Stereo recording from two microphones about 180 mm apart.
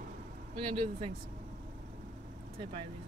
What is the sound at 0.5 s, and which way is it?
Speech, 30° right (ahead or behind).